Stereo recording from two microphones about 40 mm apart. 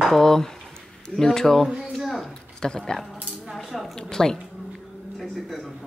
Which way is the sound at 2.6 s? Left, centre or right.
Centre.